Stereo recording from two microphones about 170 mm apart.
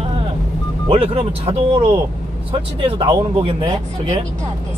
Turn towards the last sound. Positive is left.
turn(degrees=-25)  # may be behind; listen again after turning